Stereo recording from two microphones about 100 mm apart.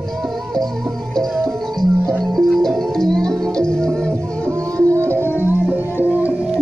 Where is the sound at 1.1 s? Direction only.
5° left (ahead or behind).